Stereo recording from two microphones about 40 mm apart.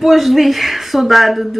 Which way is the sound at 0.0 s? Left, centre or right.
Centre.